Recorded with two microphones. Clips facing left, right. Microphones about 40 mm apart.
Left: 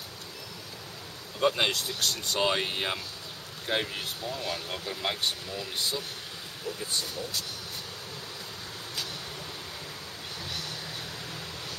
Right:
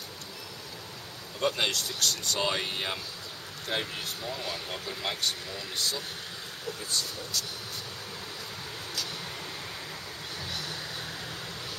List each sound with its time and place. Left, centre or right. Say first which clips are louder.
1.4 s speech: left 2 dB; centre